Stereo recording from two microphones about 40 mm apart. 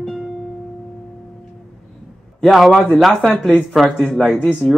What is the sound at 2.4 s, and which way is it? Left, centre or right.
A man's voice, centre.